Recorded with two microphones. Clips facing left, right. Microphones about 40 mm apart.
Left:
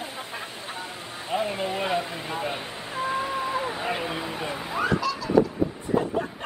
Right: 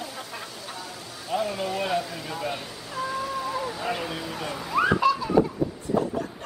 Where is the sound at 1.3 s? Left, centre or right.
Left.